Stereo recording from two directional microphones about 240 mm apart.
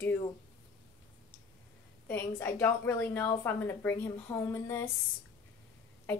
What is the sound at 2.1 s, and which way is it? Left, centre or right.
A woman's voice, centre.